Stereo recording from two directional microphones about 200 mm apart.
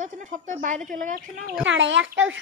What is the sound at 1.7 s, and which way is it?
Speech, 70° right (ahead or behind).